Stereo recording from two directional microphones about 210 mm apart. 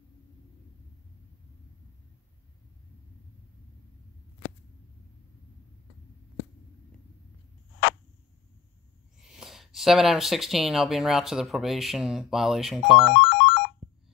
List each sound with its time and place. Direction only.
9.2 s speech: centre (ahead or behind)
13.2 s music: 55° left (ahead or behind)